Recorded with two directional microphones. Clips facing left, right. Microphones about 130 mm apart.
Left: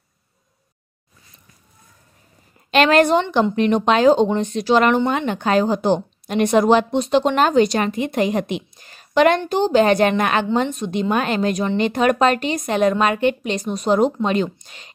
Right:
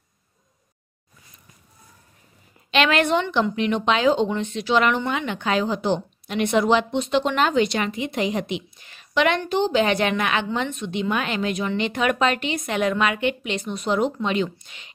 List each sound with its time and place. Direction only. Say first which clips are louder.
2.7 s a woman's voice: left 5 dB; 40° left (ahead or behind)